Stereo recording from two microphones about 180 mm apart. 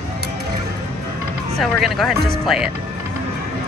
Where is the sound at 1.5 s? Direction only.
Centre (ahead or behind).